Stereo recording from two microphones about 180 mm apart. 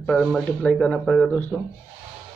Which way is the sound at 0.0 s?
Centre (ahead or behind).